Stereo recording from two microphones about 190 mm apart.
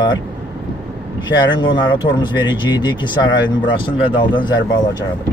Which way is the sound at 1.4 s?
25° left (ahead or behind).